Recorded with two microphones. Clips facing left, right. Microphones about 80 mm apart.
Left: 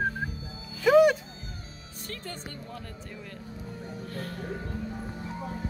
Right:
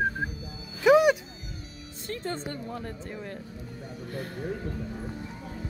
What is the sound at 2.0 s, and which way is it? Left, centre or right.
Speech, right.